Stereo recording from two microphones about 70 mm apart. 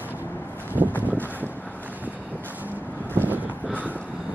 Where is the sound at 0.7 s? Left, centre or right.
Right.